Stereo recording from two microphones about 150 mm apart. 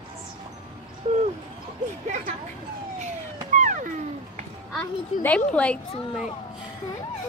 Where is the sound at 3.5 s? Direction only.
60° right (ahead or behind).